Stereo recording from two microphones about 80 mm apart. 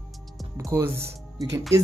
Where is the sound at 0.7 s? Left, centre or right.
Right.